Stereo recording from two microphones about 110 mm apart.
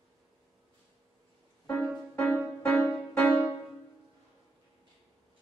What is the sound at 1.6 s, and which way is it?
Music, 20° left (ahead or behind).